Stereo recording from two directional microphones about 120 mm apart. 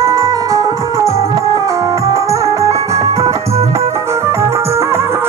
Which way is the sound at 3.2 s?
60° right (ahead or behind).